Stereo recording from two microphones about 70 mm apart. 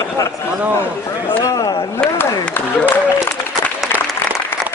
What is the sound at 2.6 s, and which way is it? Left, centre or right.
Speech, left.